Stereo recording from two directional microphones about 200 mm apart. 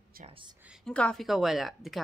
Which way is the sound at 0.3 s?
25° right (ahead or behind).